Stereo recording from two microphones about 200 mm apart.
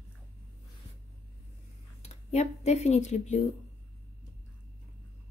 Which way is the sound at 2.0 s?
35° left (ahead or behind).